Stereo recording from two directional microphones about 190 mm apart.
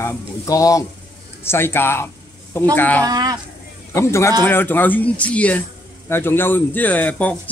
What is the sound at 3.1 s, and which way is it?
Speech, 20° right (ahead or behind).